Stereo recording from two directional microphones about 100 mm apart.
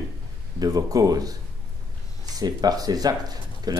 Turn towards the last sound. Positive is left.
turn(degrees=-40)  # may be behind; listen again after turning